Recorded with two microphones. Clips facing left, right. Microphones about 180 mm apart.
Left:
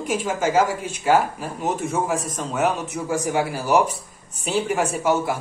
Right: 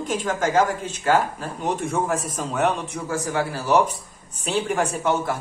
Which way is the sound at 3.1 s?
15° left (ahead or behind).